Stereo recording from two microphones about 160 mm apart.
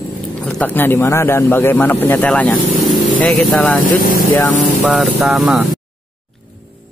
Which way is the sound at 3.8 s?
60° left (ahead or behind).